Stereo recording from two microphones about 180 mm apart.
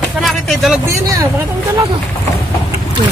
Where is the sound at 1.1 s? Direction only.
20° right (ahead or behind).